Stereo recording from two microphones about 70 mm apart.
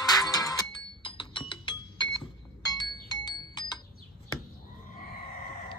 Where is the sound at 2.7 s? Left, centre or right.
Left.